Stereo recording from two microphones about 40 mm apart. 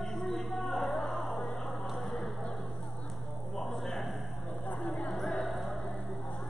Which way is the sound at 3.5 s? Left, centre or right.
Centre.